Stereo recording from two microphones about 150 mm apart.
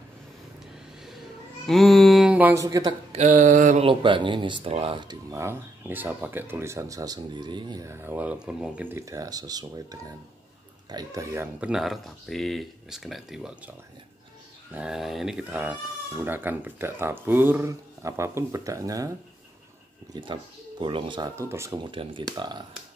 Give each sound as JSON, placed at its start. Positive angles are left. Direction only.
{"t": 1.7, "sound": "speech", "side_deg": 0}
{"t": 3.1, "sound": "mantra", "side_deg": -50}
{"t": 3.8, "sound": "speech", "side_deg": -35}
{"t": 5.3, "sound": "speech", "side_deg": -15}
{"t": 11.6, "sound": "speech", "side_deg": -5}
{"t": 14.7, "sound": "speech", "side_deg": -5}
{"t": 16.3, "sound": "speech", "side_deg": -15}
{"t": 20.8, "sound": "speech", "side_deg": -30}
{"t": 21.4, "sound": "speech", "side_deg": -20}
{"t": 21.8, "sound": "speech", "side_deg": -35}